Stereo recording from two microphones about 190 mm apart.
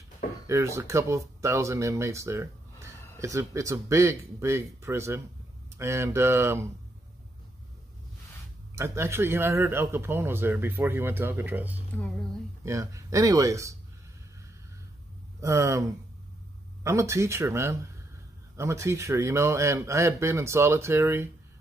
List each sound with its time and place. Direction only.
0.5 s speech: 15° right (ahead or behind)
8.7 s speech: 15° right (ahead or behind)
15.4 s speech: 15° right (ahead or behind)
16.8 s speech: 15° right (ahead or behind)